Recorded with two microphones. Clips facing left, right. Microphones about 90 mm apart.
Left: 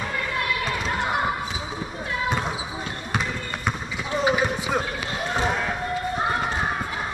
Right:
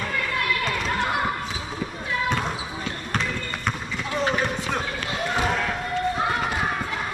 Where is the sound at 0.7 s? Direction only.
5° left (ahead or behind).